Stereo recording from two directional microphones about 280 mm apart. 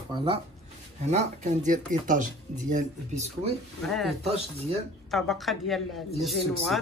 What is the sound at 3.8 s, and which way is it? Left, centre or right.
Speech, centre.